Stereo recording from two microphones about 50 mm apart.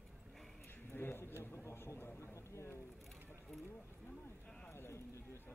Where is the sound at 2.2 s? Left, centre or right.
Left.